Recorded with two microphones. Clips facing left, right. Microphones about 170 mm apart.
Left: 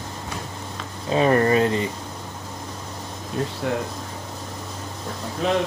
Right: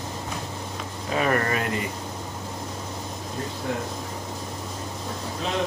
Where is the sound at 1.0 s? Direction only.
30° left (ahead or behind).